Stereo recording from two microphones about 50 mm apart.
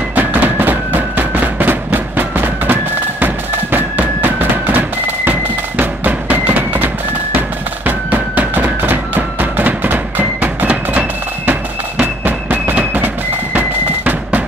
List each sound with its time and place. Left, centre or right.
0.1 s music: right